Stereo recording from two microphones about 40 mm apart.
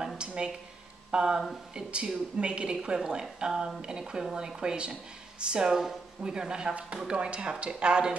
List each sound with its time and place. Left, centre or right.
0.2 s a sound: right
1.1 s a woman's voice: centre
5.7 s a woman's voice: centre